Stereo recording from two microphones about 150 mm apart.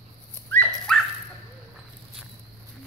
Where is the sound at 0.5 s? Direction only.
5° left (ahead or behind).